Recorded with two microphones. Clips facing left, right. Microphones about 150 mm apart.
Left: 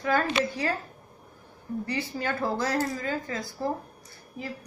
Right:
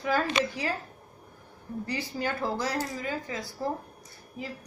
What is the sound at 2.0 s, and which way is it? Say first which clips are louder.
A woman's voice: even; 15° right (ahead or behind).